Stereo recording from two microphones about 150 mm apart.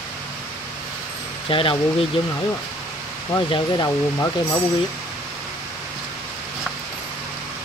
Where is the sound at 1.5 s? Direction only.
35° left (ahead or behind).